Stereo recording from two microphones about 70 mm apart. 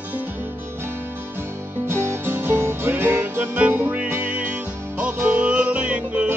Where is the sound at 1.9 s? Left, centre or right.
Right.